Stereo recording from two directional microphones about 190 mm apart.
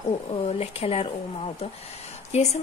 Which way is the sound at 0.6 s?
30° left (ahead or behind).